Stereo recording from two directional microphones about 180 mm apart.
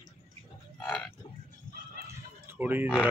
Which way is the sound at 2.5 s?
10° right (ahead or behind).